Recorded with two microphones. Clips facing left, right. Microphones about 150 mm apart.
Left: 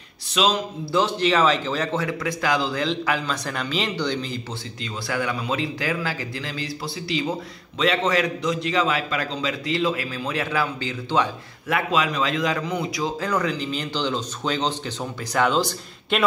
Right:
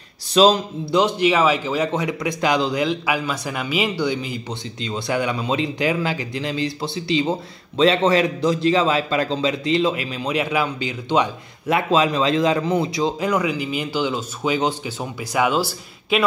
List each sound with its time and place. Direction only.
0.3 s a man's voice: 35° right (ahead or behind)
0.9 s speech: 15° right (ahead or behind)
4.8 s speech: 20° right (ahead or behind)
13.2 s speech: 10° right (ahead or behind)